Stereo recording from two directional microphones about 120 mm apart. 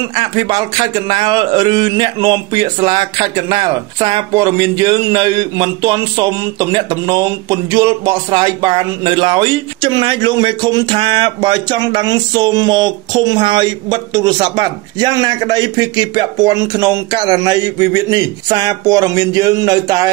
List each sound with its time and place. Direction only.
0.1 s a man's voice: 45° right (ahead or behind)